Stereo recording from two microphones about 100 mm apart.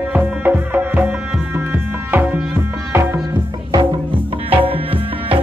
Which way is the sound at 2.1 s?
15° right (ahead or behind).